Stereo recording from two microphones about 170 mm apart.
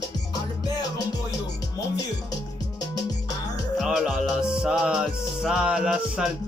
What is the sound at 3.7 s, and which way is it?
Music, 5° right (ahead or behind).